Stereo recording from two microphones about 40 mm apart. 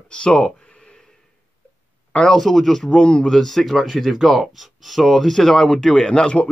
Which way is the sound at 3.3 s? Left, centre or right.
Centre.